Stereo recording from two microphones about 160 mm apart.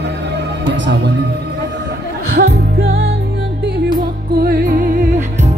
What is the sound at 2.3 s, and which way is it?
Music, 75° right (ahead or behind).